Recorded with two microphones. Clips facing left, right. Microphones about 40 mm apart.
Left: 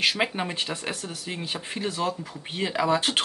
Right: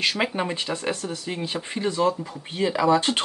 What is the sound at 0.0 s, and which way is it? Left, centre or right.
Speech, centre.